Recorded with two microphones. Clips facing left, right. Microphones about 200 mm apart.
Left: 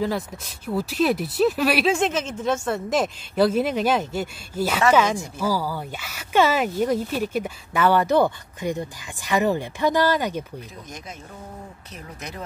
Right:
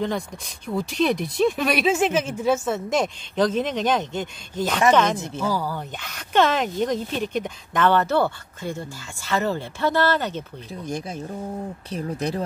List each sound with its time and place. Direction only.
0.7 s speech: 5° left (ahead or behind)
1.9 s speech: 5° right (ahead or behind); by 10.4 s 10° left (ahead or behind)
10.7 s speech: 30° right (ahead or behind)